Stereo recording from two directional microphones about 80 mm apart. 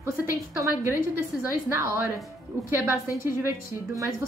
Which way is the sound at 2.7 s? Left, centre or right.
Right.